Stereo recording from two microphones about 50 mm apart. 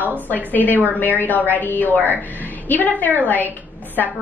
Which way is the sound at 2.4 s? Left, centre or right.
Left.